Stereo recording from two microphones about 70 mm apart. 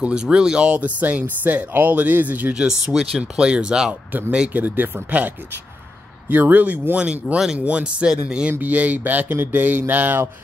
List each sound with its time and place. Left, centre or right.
0.0 s speech: centre
2.5 s speech: centre; by 4.9 s right
6.2 s speech: right
8.5 s speech: right